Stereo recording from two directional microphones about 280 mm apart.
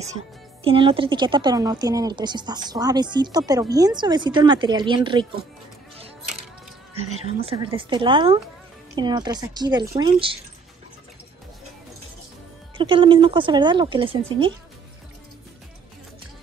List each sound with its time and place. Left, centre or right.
0.7 s a woman's voice: centre
7.2 s a woman's voice: centre
12.7 s a woman's voice: centre